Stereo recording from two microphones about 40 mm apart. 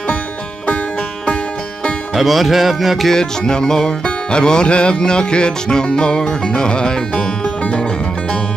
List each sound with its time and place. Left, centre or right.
2.1 s music: centre
3.1 s music: centre